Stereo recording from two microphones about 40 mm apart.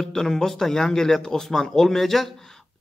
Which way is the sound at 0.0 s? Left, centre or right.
Centre.